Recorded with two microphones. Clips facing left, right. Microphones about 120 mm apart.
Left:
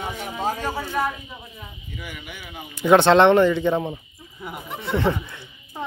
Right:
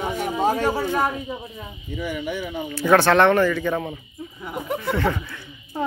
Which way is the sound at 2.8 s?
20° left (ahead or behind).